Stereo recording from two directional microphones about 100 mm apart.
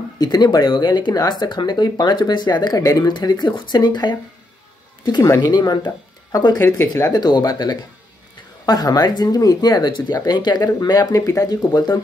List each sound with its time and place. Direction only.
0.2 s speech: 45° left (ahead or behind)
6.6 s speech: 25° left (ahead or behind)
7.1 s speech: 45° left (ahead or behind)